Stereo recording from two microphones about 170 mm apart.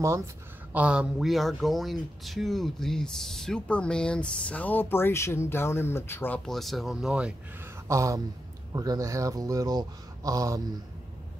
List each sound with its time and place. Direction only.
0.7 s speech: 5° right (ahead or behind)
7.9 s speech: 20° right (ahead or behind)